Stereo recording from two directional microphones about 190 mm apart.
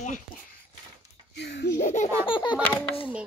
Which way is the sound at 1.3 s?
60° left (ahead or behind).